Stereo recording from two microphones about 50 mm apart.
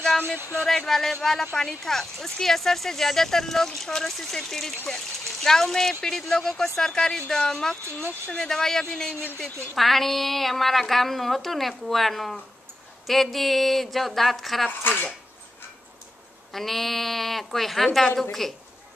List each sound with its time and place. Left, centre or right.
0.7 s speech: centre
14.8 s cutlery: left
16.5 s speech: centre